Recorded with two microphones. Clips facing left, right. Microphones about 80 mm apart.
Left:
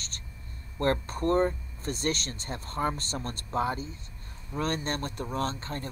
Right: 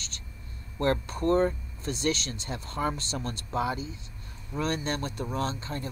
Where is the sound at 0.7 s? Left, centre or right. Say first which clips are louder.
Even; left.